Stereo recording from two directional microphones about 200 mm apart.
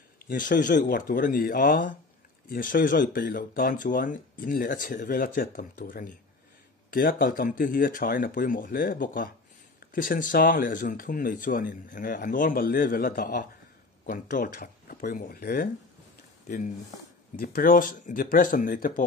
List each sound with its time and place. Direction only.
0.3 s speech: 40° left (ahead or behind)